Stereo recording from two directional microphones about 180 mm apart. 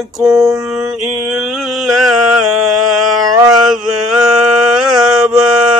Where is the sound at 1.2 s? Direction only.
5° right (ahead or behind).